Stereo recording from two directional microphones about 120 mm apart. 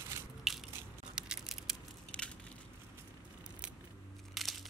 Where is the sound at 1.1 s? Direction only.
5° right (ahead or behind).